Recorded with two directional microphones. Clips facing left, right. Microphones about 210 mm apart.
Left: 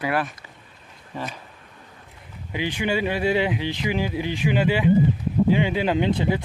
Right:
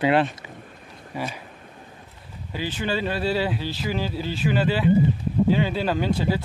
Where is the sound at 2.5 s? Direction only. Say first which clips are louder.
Left 2 dB; 15° left (ahead or behind).